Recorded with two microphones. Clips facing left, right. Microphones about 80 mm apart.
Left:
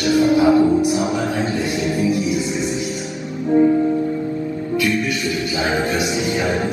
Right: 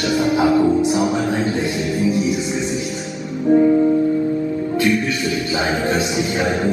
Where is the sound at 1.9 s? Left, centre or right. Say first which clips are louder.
Right 2 dB; right.